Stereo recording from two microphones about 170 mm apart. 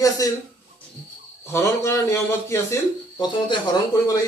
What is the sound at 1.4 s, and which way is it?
Speech, 15° left (ahead or behind).